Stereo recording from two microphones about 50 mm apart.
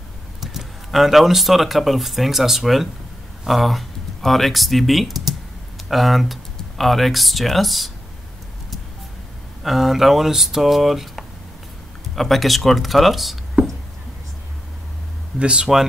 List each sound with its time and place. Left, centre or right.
0.4 s speech: centre
9.6 s speech: centre
15.3 s speech: centre